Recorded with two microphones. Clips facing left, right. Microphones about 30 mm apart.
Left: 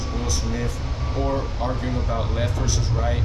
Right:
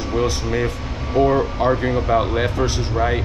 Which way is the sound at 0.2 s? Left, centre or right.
Right.